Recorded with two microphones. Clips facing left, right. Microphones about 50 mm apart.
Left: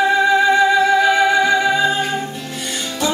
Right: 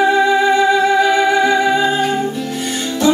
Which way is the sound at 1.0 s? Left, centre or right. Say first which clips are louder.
Right 1 dB; centre.